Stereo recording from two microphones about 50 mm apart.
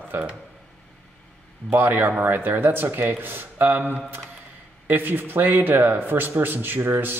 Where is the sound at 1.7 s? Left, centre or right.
Right.